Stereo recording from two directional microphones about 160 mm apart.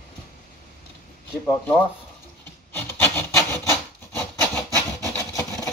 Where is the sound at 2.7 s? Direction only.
10° left (ahead or behind).